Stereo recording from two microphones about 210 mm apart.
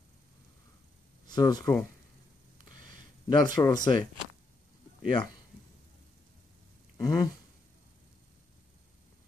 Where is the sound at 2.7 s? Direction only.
40° right (ahead or behind).